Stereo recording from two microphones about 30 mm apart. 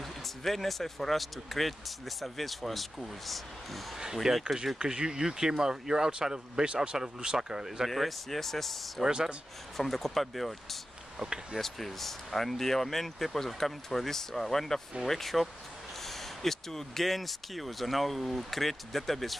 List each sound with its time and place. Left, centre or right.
0.0 s speech: centre
4.0 s speech: centre
4.7 s speech: right
7.9 s speech: centre
9.0 s speech: centre
9.8 s speech: centre